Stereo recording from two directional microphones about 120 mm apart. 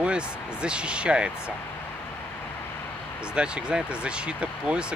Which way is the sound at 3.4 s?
10° right (ahead or behind).